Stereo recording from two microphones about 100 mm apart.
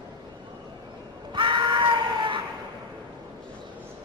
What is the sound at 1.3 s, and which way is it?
Screaming, 55° right (ahead or behind).